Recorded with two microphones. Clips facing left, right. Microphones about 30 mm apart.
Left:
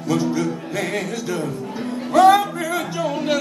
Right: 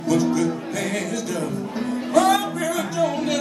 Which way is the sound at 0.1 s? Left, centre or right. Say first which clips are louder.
Right 1 dB; left.